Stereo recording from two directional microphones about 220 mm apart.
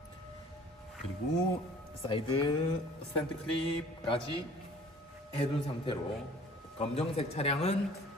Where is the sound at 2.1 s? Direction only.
20° left (ahead or behind).